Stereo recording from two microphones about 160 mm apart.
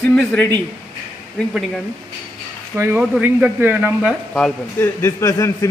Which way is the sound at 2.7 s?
15° right (ahead or behind).